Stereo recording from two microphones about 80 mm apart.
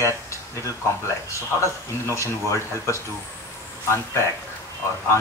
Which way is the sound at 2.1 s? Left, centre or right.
Left.